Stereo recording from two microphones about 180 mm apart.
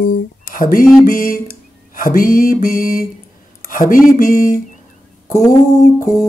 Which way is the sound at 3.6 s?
50° left (ahead or behind).